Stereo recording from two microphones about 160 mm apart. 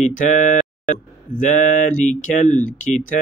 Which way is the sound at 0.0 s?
50° left (ahead or behind).